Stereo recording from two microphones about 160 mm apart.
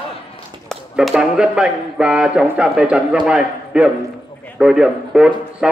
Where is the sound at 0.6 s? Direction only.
Centre (ahead or behind).